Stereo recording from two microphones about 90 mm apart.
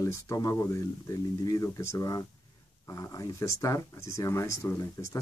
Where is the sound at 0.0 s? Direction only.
40° left (ahead or behind).